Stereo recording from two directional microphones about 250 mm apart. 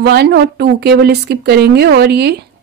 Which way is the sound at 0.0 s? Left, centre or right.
Right.